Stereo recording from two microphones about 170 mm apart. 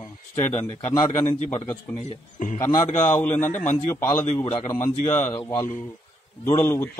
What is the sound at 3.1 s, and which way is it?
Speech, 15° left (ahead or behind).